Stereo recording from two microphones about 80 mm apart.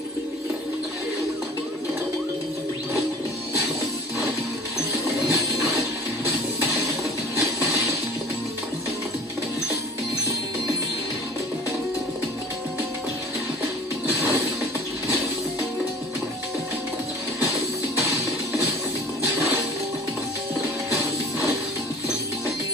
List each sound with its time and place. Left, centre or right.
4.9 s music: right